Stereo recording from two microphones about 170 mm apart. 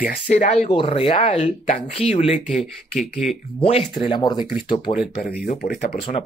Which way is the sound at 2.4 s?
Centre (ahead or behind).